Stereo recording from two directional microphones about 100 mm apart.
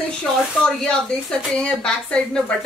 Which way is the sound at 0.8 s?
5° left (ahead or behind).